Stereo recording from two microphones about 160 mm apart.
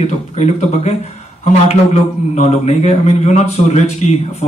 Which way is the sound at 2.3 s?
45° left (ahead or behind).